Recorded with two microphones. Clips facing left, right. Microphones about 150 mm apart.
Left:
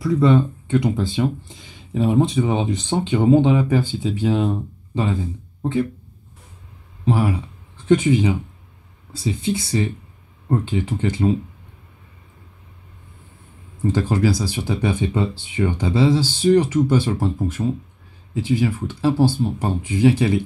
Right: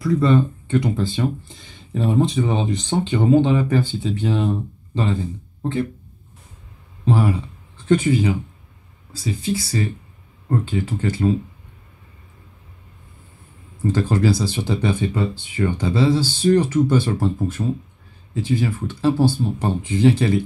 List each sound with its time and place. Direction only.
0.1 s speech: 15° left (ahead or behind)
7.1 s speech: 10° left (ahead or behind)
13.8 s speech: 15° left (ahead or behind)